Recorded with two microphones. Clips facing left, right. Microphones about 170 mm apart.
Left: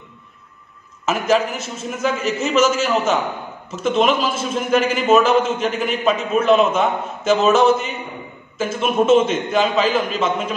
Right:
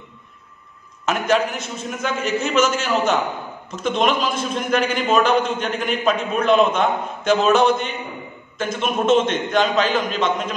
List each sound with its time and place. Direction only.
1.0 s a man's voice: centre (ahead or behind)